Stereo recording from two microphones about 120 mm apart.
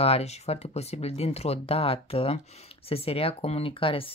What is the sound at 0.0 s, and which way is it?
Speech, 60° left (ahead or behind).